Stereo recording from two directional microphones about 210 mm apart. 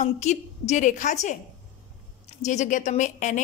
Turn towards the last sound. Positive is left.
turn(degrees=35)  # may be behind; listen again after turning